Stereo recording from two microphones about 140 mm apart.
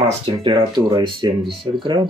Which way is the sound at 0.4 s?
35° right (ahead or behind).